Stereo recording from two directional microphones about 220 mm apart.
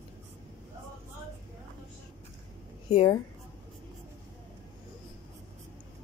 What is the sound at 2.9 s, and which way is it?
Speech, 25° left (ahead or behind).